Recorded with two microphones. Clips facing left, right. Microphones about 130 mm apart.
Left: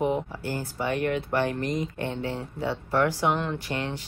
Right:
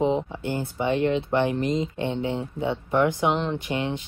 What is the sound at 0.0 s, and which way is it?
Speech, 20° right (ahead or behind).